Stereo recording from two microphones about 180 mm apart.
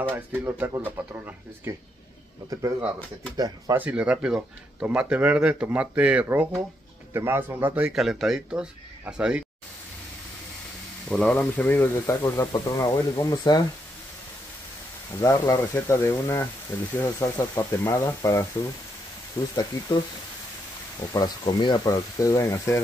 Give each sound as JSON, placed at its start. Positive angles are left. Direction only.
{"t": 0.1, "sound": "speech", "side_deg": -10}
{"t": 3.7, "sound": "speech", "side_deg": -10}
{"t": 11.1, "sound": "speech", "side_deg": 5}
{"t": 15.1, "sound": "speech", "side_deg": 15}
{"t": 21.1, "sound": "speech", "side_deg": 25}